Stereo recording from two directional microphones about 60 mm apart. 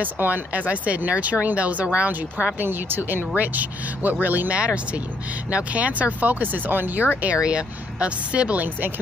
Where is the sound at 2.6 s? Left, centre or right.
Right.